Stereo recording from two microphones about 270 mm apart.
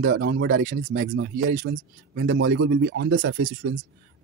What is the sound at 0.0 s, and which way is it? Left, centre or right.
Speech, right.